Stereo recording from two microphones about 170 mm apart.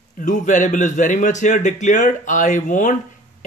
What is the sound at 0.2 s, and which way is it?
Speech, 50° left (ahead or behind).